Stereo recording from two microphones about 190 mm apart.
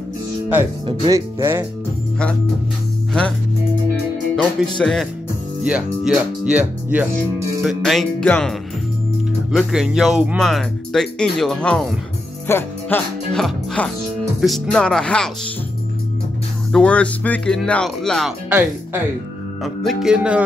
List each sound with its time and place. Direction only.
0.8 s speech: 20° right (ahead or behind)
3.1 s speech: 5° left (ahead or behind)
4.4 s speech: centre (ahead or behind)
16.7 s speech: 5° left (ahead or behind)